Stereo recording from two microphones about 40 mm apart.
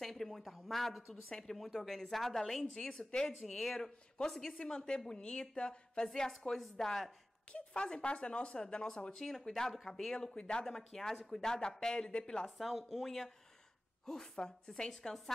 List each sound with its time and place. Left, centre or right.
0.0 s a sound: centre
0.6 s speech: centre
3.0 s a woman's voice: left
3.4 s a woman's voice: centre
7.8 s a woman's voice: centre
10.3 s a woman's voice: left
12.4 s speech: centre